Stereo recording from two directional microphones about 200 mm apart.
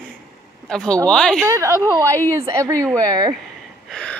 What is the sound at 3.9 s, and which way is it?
Gasp, 5° left (ahead or behind).